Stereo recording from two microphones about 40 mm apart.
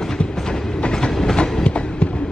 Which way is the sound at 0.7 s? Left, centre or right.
Left.